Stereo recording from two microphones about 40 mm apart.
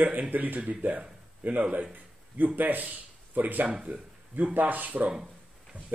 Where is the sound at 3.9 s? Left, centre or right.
Right.